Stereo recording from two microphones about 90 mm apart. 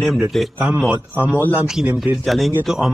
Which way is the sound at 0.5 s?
25° right (ahead or behind).